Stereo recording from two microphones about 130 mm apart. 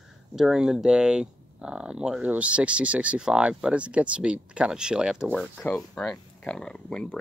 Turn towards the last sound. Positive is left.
turn(degrees=5)  # may be behind; listen again after turning